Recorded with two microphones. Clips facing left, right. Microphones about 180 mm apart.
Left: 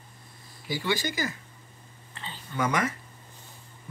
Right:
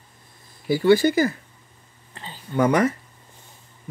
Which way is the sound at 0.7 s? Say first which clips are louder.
Right 13 dB; 60° right (ahead or behind).